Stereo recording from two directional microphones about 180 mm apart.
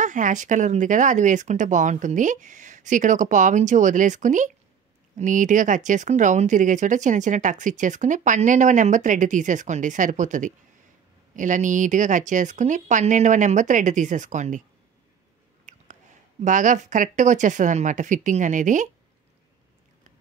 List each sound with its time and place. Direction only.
0.0 s speech: 45° right (ahead or behind)
15.6 s speech: 45° right (ahead or behind)